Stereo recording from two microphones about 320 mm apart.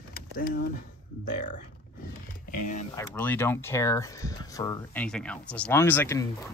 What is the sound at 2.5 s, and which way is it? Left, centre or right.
Speech, left.